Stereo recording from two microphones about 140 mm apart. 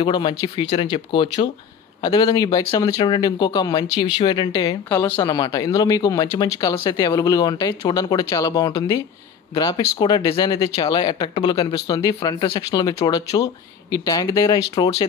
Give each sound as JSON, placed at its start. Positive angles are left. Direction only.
{"t": 0.0, "sound": "speech", "side_deg": 35}
{"t": 4.8, "sound": "a woman's voice", "side_deg": 10}
{"t": 5.1, "sound": "speech", "side_deg": 30}